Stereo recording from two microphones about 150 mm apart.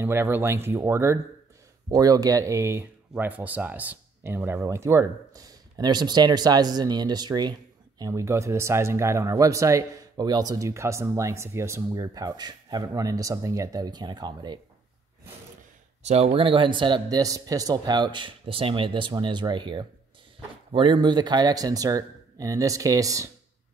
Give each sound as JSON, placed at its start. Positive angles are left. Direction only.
{"t": 0.0, "sound": "speech", "side_deg": -15}
{"t": 16.0, "sound": "speech", "side_deg": -45}